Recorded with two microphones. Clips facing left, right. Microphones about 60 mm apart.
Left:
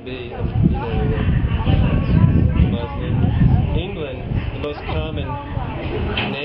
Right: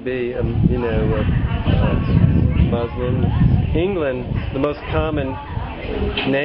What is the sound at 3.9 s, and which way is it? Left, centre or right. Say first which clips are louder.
Speech: right 7 dB; right.